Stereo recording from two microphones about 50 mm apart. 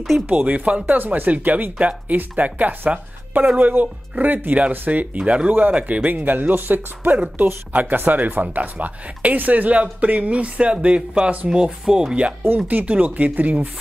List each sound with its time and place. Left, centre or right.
0.3 s speech: right
0.9 s speech: right
5.2 s speech: right
11.8 s music: centre
12.6 s speech: right